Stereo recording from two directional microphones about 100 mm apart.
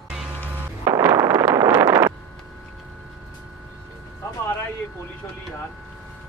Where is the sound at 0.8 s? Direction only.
35° right (ahead or behind).